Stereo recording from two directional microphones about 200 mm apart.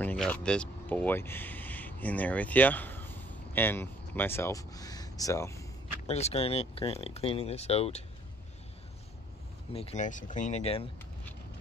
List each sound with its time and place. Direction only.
0.0 s speech: 5° left (ahead or behind)
6.0 s speech: 30° left (ahead or behind)
9.7 s speech: 30° left (ahead or behind)